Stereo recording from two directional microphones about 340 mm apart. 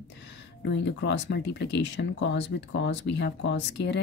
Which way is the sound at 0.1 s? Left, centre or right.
Left.